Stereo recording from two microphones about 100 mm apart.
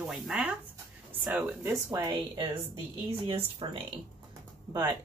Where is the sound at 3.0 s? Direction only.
70° right (ahead or behind).